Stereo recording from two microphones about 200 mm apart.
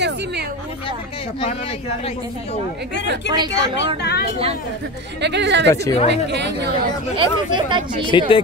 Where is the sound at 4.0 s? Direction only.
55° left (ahead or behind).